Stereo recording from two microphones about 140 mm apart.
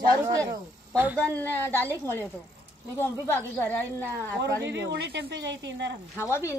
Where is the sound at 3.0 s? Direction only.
15° left (ahead or behind).